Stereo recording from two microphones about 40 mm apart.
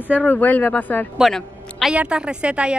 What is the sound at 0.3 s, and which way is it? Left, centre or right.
Speech, left.